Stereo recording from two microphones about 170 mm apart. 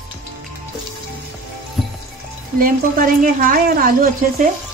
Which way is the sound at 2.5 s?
55° right (ahead or behind).